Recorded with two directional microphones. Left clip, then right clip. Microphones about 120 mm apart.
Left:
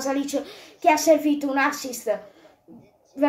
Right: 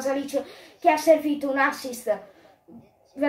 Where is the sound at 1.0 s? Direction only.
30° left (ahead or behind).